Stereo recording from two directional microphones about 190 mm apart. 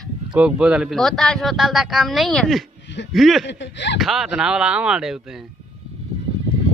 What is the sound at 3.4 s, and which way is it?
Speech, 65° left (ahead or behind).